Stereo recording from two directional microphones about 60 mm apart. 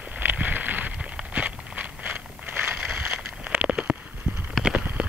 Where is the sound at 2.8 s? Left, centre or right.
Centre.